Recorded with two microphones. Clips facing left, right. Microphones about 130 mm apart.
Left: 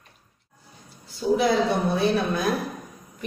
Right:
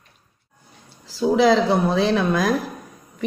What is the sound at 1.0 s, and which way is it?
Speech, 85° right.